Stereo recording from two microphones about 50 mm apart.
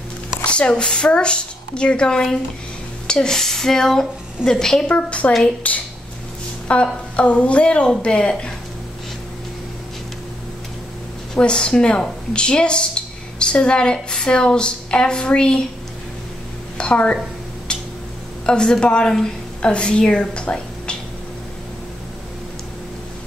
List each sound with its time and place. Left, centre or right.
0.5 s a woman's voice: left
4.8 s a woman's voice: left
11.3 s a woman's voice: centre
16.7 s a woman's voice: left
17.7 s tick-tock: centre
18.4 s a woman's voice: centre